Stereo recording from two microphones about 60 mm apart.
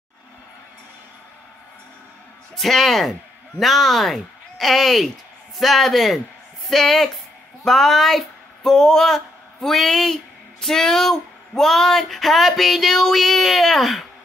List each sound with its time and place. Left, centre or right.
2.5 s a man's voice: centre